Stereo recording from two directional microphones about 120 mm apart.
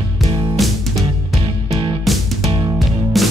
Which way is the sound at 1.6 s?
45° right (ahead or behind).